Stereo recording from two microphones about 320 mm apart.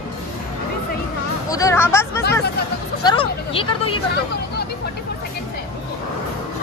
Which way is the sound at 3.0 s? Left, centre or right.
Centre.